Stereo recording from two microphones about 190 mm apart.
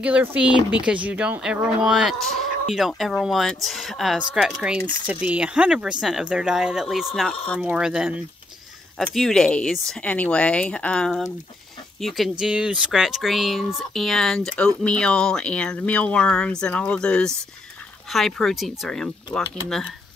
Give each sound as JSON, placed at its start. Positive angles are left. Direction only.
{"t": 0.0, "sound": "speech", "side_deg": -10}